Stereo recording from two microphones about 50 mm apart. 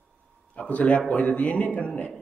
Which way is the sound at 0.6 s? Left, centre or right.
Left.